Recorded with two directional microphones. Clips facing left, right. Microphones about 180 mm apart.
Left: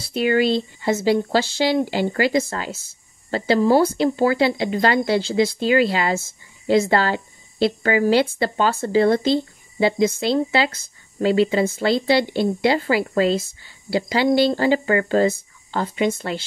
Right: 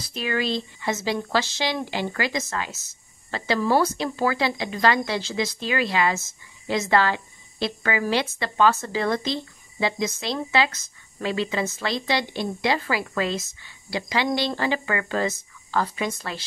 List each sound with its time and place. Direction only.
0.0 s speech: 30° left (ahead or behind)